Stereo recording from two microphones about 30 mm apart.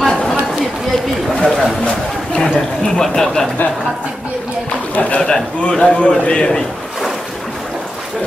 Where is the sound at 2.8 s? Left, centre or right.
Centre.